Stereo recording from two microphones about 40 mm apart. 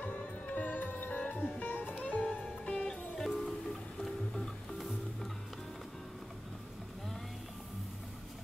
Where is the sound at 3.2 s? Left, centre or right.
Centre.